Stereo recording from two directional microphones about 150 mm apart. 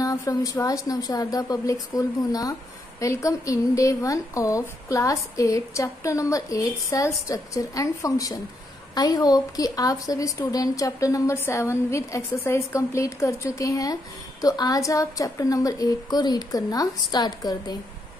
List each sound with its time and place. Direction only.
0.0 s a woman's voice: 20° left (ahead or behind)